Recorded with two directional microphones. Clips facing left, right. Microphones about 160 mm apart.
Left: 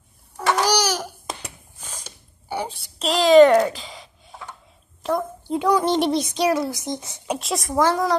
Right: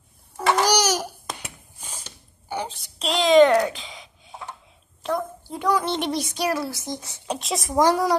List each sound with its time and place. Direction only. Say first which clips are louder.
0.4 s babbling: even; centre (ahead or behind)
0.7 s babbling: even; 20° right (ahead or behind)
1.8 s a sound: left 1 dB; 15° right (ahead or behind)
2.0 s a sound: left 2 dB; 10° left (ahead or behind)
5.5 s speech: left 4 dB; 25° left (ahead or behind)
5.9 s child singing: left 6 dB; 35° left (ahead or behind)
6.1 s a woman's voice: left 4 dB; 20° left (ahead or behind)
7.3 s a woman's voice: left 1 dB; centre (ahead or behind)
7.7 s speech: right 1 dB; 15° right (ahead or behind)